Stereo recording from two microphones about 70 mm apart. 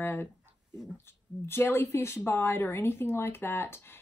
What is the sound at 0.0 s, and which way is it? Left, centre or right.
Speech, left.